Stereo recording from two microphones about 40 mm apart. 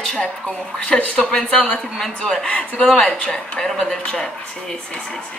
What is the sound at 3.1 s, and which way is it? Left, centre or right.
Speech, left.